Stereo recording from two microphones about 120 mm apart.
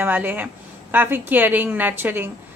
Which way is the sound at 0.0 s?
15° right (ahead or behind).